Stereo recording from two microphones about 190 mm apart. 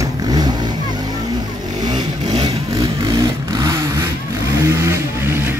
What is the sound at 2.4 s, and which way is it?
Vehicle, 20° right (ahead or behind).